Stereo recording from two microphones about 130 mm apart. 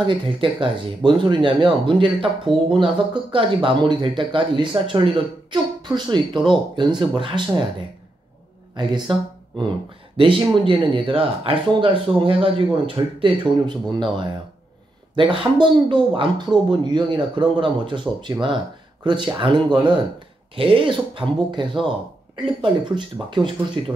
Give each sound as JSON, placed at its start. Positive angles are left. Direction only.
{"t": 0.0, "sound": "speech", "side_deg": -40}
{"t": 8.7, "sound": "speech", "side_deg": -35}
{"t": 10.1, "sound": "speech", "side_deg": -45}